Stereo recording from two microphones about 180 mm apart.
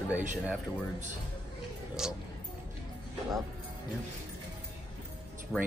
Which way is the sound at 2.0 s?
5° right (ahead or behind).